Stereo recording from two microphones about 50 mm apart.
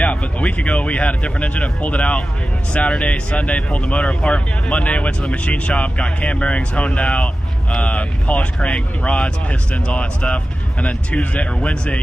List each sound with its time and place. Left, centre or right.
0.0 s speech: left